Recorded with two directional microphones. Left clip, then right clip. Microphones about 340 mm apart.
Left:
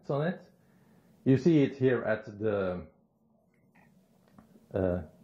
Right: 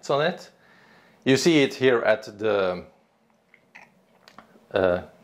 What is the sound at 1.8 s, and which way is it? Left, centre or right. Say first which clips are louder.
Speech: right 8 dB; centre.